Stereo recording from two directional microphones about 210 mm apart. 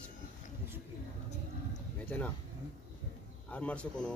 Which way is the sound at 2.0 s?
5° left (ahead or behind).